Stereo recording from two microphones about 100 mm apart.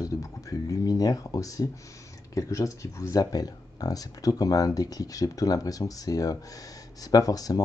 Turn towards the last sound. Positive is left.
turn(degrees=40)  # may be behind; listen again after turning